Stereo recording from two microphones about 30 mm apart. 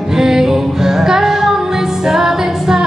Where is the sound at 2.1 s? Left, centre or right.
Centre.